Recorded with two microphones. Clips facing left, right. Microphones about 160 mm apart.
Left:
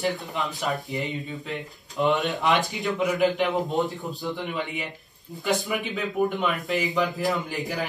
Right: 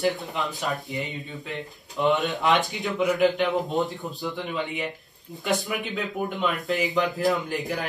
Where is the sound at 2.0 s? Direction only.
Centre (ahead or behind).